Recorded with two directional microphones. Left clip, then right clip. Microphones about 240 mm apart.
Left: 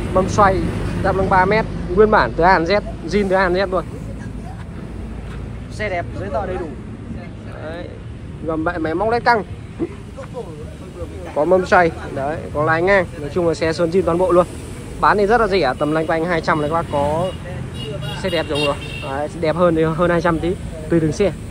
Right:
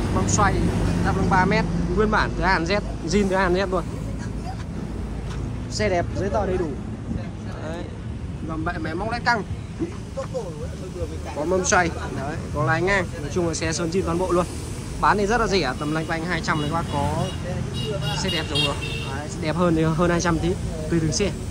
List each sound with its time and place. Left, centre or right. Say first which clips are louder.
0.3 s speech: left 6 dB; centre
5.8 s speech: even; right
8.6 s speech: left 8 dB; centre
11.3 s speech: left 7 dB; centre